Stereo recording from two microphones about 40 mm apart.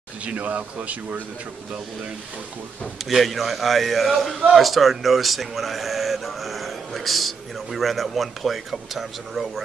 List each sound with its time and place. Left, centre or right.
0.2 s speech: right
3.1 s speech: centre